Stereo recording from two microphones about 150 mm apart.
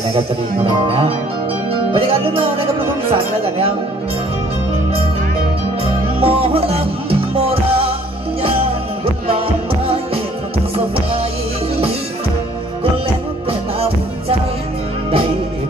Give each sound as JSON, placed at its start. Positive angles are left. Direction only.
{"t": 2.0, "sound": "music", "side_deg": -35}
{"t": 6.2, "sound": "music", "side_deg": -40}